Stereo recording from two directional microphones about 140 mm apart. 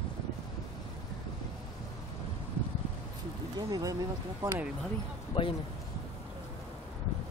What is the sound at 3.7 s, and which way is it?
Speech, 25° right (ahead or behind).